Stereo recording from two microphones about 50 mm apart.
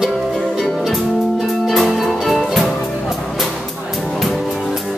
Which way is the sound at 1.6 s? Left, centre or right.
Centre.